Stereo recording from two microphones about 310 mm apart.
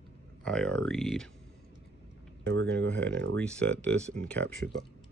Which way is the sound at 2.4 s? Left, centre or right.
Right.